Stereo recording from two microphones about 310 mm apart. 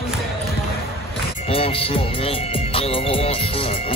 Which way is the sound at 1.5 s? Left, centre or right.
Centre.